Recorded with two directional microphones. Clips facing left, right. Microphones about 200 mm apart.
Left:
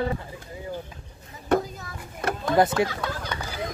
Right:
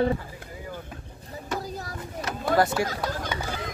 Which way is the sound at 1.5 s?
55° left (ahead or behind).